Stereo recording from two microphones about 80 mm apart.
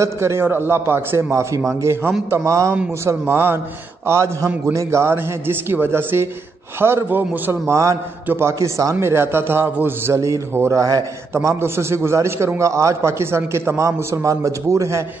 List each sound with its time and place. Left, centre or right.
0.0 s a man's voice: right
7.7 s a man's voice: right
11.3 s a man's voice: right